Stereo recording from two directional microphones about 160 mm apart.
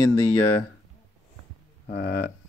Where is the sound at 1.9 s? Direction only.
75° left (ahead or behind).